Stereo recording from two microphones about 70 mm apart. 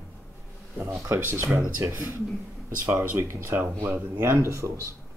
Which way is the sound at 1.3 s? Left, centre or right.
Right.